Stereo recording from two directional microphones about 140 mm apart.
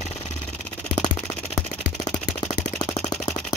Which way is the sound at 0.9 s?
30° left (ahead or behind).